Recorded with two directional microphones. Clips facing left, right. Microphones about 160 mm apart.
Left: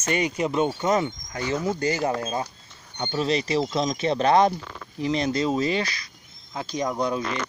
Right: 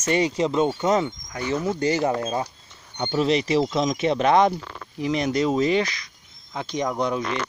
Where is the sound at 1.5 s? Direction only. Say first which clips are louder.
Right 1 dB; 15° left (ahead or behind).